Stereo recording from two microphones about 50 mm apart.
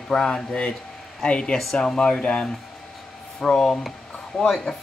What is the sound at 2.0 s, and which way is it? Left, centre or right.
Speech, centre.